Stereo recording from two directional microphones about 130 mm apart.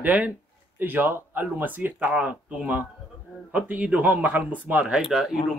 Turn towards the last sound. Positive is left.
turn(degrees=-5)  # may be behind; listen again after turning